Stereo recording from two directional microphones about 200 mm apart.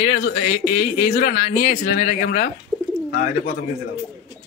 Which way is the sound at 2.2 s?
55° left (ahead or behind).